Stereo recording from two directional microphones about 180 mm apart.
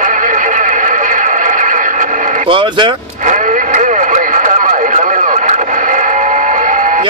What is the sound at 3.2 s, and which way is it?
Radio, 45° right (ahead or behind).